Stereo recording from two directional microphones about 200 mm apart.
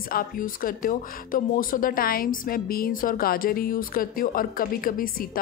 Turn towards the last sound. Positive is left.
turn(degrees=45)  # may be behind; listen again after turning